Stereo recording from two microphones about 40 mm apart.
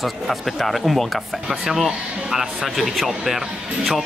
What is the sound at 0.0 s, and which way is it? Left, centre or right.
Speech, centre.